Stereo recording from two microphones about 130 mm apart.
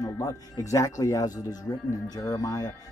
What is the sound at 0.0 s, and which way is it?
Speech, 25° left (ahead or behind).